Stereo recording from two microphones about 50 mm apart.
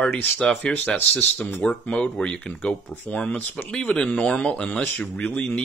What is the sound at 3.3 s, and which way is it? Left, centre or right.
Speech, left.